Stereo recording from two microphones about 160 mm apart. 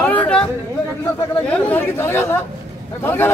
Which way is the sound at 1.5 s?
10° left (ahead or behind).